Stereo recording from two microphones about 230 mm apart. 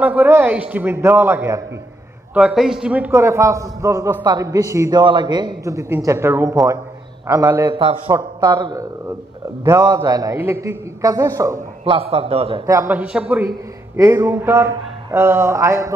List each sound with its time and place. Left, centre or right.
0.0 s a man's voice: centre
11.8 s a man's voice: right
12.6 s a man's voice: centre